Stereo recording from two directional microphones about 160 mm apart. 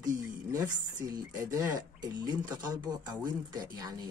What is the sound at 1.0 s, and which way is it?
Speech, 25° right (ahead or behind).